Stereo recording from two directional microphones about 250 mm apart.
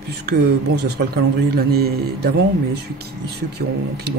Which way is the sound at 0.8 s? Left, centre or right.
Right.